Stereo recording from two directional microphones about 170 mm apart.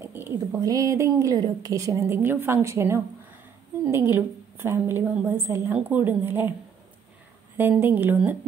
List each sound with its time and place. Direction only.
0.0 s a woman's voice: 10° right (ahead or behind)
7.8 s a woman's voice: 10° right (ahead or behind)